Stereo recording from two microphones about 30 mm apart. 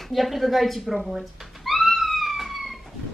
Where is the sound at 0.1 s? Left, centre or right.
Centre.